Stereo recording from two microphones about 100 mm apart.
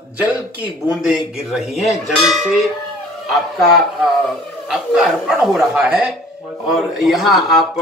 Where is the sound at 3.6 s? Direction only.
Centre (ahead or behind).